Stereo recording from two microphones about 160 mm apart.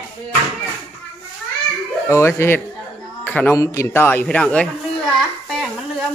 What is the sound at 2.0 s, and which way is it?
A man's voice, 15° left (ahead or behind).